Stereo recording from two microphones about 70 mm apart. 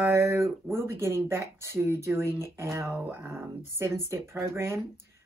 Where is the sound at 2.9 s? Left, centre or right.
Right.